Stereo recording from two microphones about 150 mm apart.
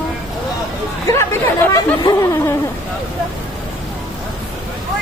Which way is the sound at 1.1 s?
15° left (ahead or behind).